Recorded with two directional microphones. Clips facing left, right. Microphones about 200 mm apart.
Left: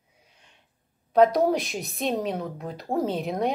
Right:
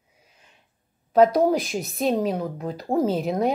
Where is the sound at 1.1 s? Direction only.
Centre (ahead or behind).